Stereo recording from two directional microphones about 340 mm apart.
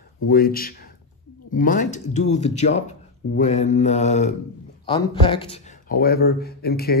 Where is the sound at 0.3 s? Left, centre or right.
Left.